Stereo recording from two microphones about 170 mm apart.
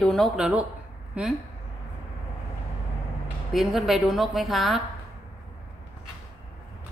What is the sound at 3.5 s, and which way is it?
Speech, centre (ahead or behind).